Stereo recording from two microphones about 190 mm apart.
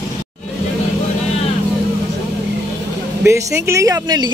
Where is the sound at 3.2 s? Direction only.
15° right (ahead or behind).